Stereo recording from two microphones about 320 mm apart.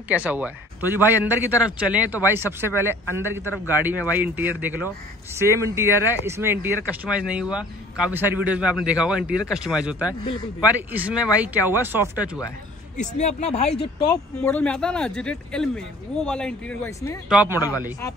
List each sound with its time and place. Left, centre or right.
0.1 s speech: centre
12.4 s a sound: centre
13.0 s speech: left
14.4 s speech: centre
17.3 s speech: centre
17.6 s speech: centre